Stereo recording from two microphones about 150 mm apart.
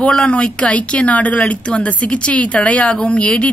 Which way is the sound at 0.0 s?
5° left (ahead or behind).